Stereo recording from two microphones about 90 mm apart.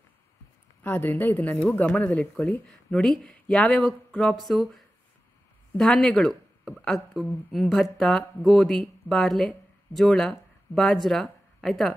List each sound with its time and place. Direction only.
0.8 s speech: 20° left (ahead or behind); by 11.9 s 5° left (ahead or behind)